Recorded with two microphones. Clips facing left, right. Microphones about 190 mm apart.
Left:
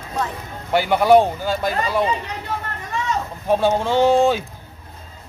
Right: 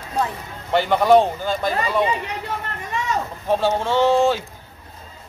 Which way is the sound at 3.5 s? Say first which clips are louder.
Left 2 dB; 15° left (ahead or behind).